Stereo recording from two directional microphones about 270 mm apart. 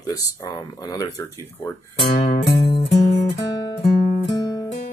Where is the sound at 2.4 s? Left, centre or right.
Centre.